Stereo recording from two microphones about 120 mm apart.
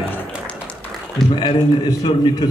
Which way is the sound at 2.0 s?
35° left (ahead or behind).